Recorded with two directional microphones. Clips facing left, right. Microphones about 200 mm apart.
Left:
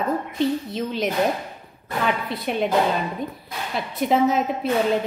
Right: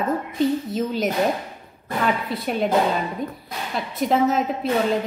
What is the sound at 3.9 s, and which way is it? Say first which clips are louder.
Speech: even; centre (ahead or behind).